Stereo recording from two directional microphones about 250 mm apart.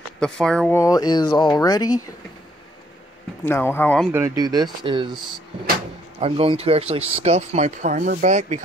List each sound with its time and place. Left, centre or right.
0.2 s speech: centre
3.4 s speech: centre
4.1 s speech: centre
6.1 s speech: right